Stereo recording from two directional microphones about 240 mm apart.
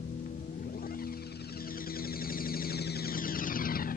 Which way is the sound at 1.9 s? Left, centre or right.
Left.